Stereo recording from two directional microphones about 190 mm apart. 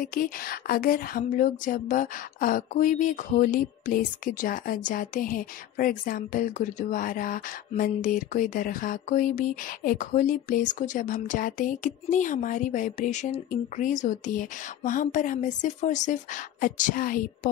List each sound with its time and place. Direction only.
0.0 s speech: 50° left (ahead or behind)